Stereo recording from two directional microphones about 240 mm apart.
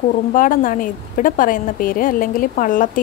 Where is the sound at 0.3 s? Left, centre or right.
Left.